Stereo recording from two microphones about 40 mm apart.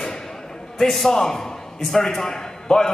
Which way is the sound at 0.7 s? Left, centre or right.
Centre.